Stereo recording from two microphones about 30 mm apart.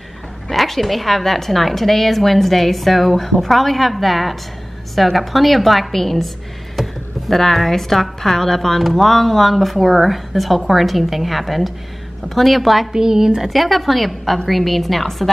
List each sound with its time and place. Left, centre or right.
0.5 s a woman's voice: centre
12.9 s a woman's voice: centre
13.5 s a woman's voice: centre